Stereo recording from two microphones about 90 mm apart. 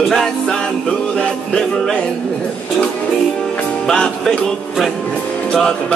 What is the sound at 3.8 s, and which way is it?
Music, 5° left (ahead or behind).